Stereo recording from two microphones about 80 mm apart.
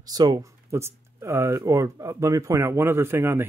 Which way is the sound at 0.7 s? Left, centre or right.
Right.